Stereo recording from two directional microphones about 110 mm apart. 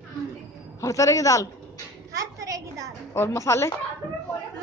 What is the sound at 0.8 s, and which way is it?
Speech, 30° left (ahead or behind).